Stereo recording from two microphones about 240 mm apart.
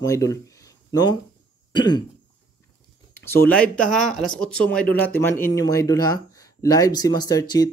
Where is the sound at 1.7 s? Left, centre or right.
Centre.